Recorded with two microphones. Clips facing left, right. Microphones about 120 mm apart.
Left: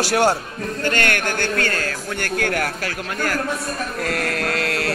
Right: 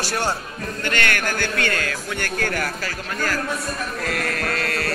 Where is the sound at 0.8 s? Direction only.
45° left (ahead or behind).